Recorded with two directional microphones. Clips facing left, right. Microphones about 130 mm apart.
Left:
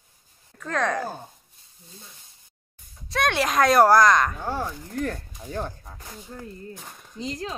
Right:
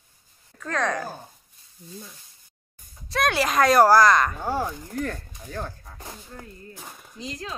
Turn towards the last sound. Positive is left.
turn(degrees=30)  # may be behind; listen again after turning